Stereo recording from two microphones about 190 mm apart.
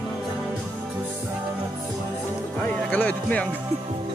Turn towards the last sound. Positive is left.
turn(degrees=5)  # may be behind; listen again after turning